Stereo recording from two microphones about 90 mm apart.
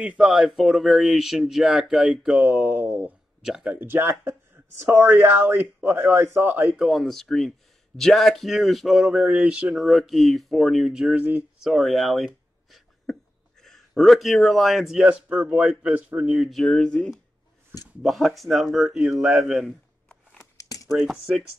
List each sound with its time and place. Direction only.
0.0 s speech: 10° right (ahead or behind)
2.4 s speech: 20° right (ahead or behind)
3.4 s speech: 5° right (ahead or behind)
3.7 s speech: 20° right (ahead or behind)
6.8 s speech: centre (ahead or behind)
11.7 s speech: centre (ahead or behind)
12.7 s a sound: 5° left (ahead or behind)
15.0 s speech: 15° right (ahead or behind)
16.3 s speech: centre (ahead or behind)
20.5 s a sound: 40° left (ahead or behind)
20.9 s speech: centre (ahead or behind)